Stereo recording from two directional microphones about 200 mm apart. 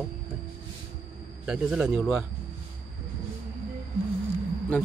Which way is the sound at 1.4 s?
5° right (ahead or behind).